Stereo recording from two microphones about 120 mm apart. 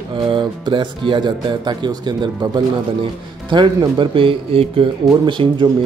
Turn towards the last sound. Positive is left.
turn(degrees=-40)  # may be behind; listen again after turning